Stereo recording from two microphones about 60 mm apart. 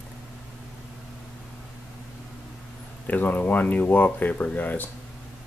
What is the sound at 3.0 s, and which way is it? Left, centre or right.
Speech, left.